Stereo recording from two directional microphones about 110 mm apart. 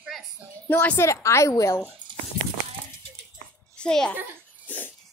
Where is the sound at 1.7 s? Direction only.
15° left (ahead or behind).